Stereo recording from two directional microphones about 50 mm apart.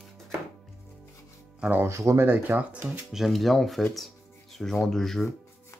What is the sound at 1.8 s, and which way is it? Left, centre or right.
Speech, right.